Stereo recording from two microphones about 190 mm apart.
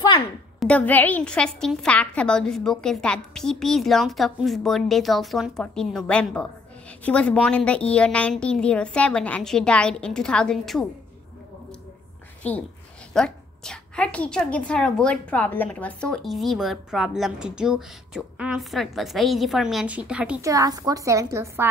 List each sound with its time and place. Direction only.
0.6 s a woman's voice: 5° left (ahead or behind)
12.4 s a woman's voice: 10° left (ahead or behind)
20.4 s a woman's voice: 20° right (ahead or behind)